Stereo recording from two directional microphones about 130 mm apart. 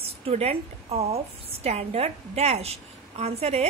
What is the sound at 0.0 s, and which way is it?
A woman's voice, 50° right (ahead or behind).